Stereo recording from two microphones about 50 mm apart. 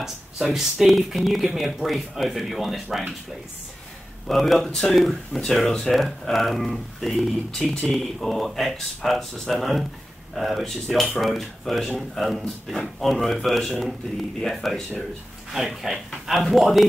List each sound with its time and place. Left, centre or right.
0.0 s speech: centre
4.3 s speech: centre